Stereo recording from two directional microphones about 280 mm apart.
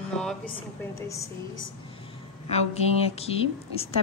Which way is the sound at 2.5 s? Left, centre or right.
Left.